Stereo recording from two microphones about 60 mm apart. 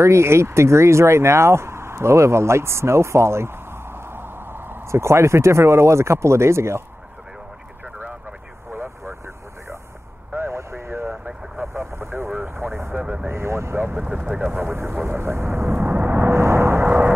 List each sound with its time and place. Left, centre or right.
0.0 s speech: right
8.7 s vehicle: right
10.5 s vehicle: right
13.0 s vehicle: centre
13.3 s vehicle: right
13.9 s speech: centre
15.0 s vehicle: right